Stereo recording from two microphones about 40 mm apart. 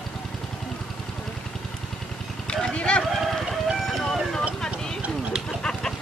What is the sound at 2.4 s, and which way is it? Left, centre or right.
Clip-clop, left.